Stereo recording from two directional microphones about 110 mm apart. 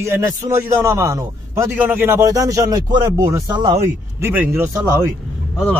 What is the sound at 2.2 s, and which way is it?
Speech, 30° right (ahead or behind).